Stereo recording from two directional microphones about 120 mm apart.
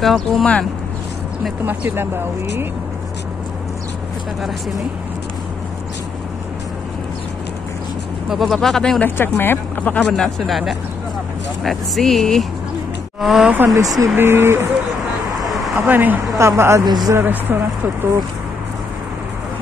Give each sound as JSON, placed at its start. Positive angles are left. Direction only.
{"t": 0.0, "sound": "speech", "side_deg": 0}
{"t": 1.7, "sound": "speech", "side_deg": -15}
{"t": 8.3, "sound": "speech", "side_deg": 0}
{"t": 9.0, "sound": "speech", "side_deg": 20}
{"t": 13.7, "sound": "speech", "side_deg": -30}
{"t": 15.7, "sound": "speech", "side_deg": -15}
{"t": 16.8, "sound": "speech", "side_deg": -35}
{"t": 17.1, "sound": "speech", "side_deg": -15}